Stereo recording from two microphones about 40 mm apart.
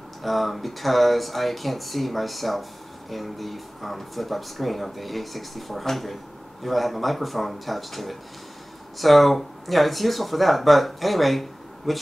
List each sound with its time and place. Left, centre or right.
0.2 s speech: centre